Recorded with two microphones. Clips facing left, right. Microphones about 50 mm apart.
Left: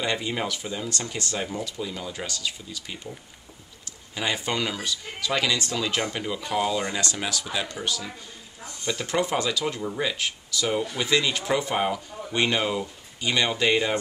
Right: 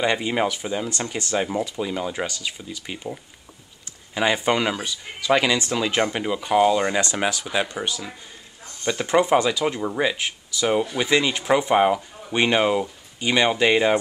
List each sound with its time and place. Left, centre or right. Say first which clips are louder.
0.0 s speech: right 6 dB; right
4.1 s speech: right 7 dB; right